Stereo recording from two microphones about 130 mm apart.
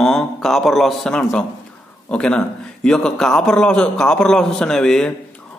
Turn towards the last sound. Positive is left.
turn(degrees=5)  # may be behind; listen again after turning